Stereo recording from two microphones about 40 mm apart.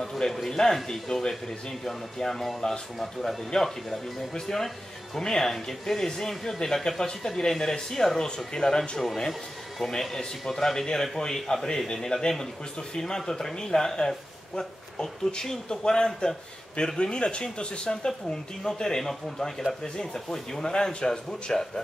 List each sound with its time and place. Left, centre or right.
0.0 s a sound: centre
0.3 s speech: centre
9.8 s speech: centre
18.0 s speech: centre